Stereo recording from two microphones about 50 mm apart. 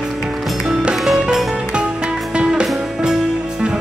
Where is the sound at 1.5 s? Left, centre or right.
Centre.